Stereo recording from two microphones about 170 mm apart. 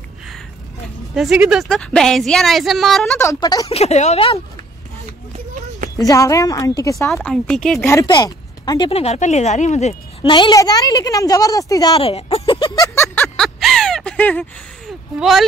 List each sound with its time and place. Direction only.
1.1 s a woman's voice: 5° right (ahead or behind)
3.2 s a woman's voice: 20° left (ahead or behind)
3.7 s a woman's voice: 40° left (ahead or behind)
5.9 s a woman's voice: 20° left (ahead or behind)
7.2 s a woman's voice: 5° left (ahead or behind)
7.8 s speech: 20° left (ahead or behind)
8.9 s a woman's voice: 40° left (ahead or behind)
10.3 s a woman's voice: 25° left (ahead or behind)
11.9 s a sound: 35° left (ahead or behind); by 14.4 s 10° left (ahead or behind)
15.1 s a woman's voice: centre (ahead or behind)